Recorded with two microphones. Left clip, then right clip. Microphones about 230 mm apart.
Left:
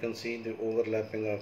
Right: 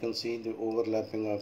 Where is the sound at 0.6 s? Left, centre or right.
Centre.